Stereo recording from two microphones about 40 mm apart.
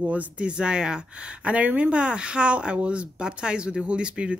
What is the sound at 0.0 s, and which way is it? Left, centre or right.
Speech, right.